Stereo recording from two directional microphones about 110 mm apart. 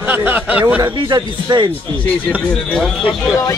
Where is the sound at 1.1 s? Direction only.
40° right (ahead or behind).